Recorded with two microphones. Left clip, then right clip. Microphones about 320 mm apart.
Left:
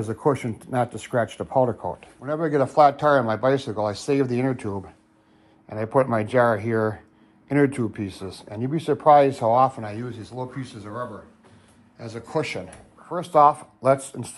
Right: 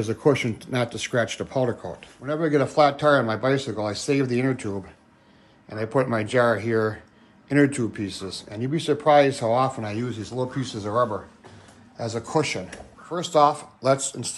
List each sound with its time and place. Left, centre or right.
0.0 s a man's voice: centre
13.1 s speech: centre